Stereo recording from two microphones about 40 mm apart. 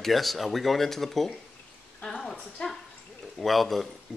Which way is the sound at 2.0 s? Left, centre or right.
Centre.